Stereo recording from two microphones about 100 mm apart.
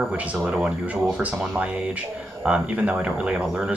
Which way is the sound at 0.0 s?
10° right (ahead or behind).